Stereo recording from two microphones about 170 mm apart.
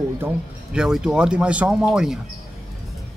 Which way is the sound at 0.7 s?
5° right (ahead or behind).